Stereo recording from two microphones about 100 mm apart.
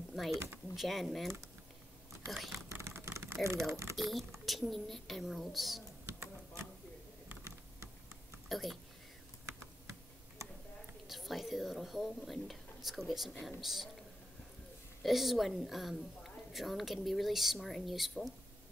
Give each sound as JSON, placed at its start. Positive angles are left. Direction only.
{"t": 0.1, "sound": "a woman's voice", "side_deg": 0}
{"t": 2.7, "sound": "vehicle", "side_deg": -25}
{"t": 3.4, "sound": "speech", "side_deg": -30}
{"t": 3.9, "sound": "a woman's voice", "side_deg": 0}
{"t": 6.0, "sound": "a sound", "side_deg": -25}
{"t": 7.2, "sound": "typing", "side_deg": -30}
{"t": 8.5, "sound": "a woman's voice", "side_deg": 0}
{"t": 11.1, "sound": "a woman's voice", "side_deg": 0}
{"t": 15.0, "sound": "a woman's voice", "side_deg": 0}